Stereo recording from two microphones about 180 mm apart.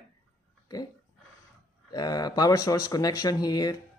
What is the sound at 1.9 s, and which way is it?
Speech, 20° left (ahead or behind).